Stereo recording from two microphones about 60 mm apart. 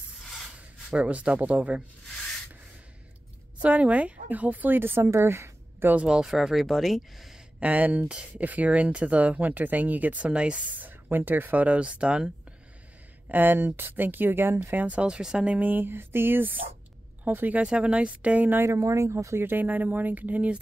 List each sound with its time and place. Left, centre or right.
0.2 s a sound: centre
0.9 s speech: right
3.6 s speech: right
5.0 s a woman's voice: right
6.0 s speech: centre
7.6 s speech: right
13.3 s speech: right
15.7 s speech: right
18.6 s speech: right